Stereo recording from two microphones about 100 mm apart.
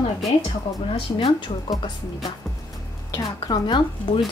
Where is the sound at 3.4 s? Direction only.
50° left (ahead or behind).